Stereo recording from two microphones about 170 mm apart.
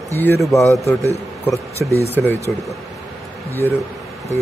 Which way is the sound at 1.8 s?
15° right (ahead or behind).